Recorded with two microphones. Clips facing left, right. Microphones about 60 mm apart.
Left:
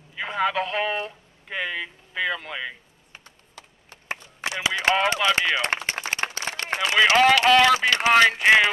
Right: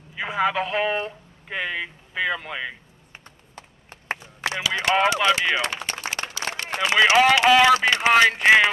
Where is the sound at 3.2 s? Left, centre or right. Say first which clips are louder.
Right 3 dB; right.